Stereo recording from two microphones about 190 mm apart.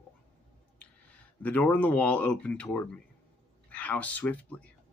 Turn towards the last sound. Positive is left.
turn(degrees=10)  # may be behind; listen again after turning